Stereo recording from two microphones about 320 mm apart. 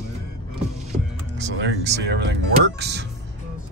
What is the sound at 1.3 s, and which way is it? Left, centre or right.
Speech, right.